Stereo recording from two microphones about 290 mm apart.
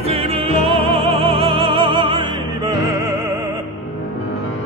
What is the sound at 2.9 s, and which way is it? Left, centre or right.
Opera, centre.